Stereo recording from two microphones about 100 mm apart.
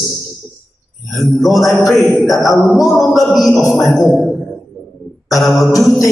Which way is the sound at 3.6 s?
30° left (ahead or behind).